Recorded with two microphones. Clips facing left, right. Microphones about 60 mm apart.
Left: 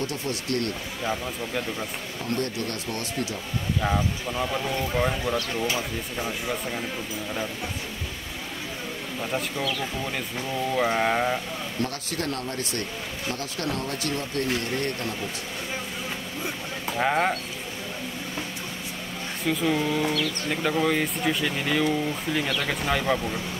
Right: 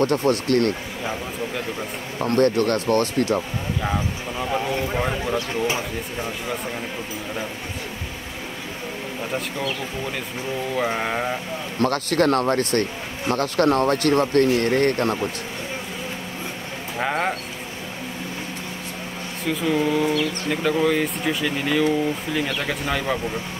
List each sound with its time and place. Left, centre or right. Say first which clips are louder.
0.0 s speech: right 10 dB; right
2.2 s speech: right 11 dB; right
3.8 s speech: left 1 dB; centre; by 5.9 s right
10.9 s speech: left 1 dB; centre
11.8 s speech: right 12 dB; right
17.0 s speech: even; centre
19.4 s speech: right 3 dB; centre